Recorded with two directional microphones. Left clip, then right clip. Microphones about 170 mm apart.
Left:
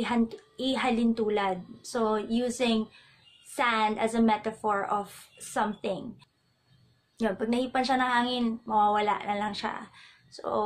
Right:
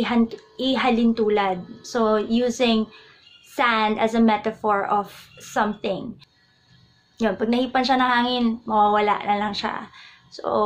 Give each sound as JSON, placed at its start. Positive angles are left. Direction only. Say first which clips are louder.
{"t": 0.0, "sound": "a woman's voice", "louder": "right 6 dB", "side_deg": 5}
{"t": 7.2, "sound": "a woman's voice", "louder": "right 7 dB", "side_deg": 5}